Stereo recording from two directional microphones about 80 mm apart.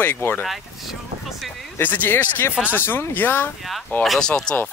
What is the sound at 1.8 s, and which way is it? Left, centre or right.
Speech, left.